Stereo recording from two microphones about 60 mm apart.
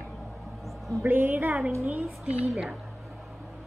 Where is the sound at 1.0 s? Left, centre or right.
Right.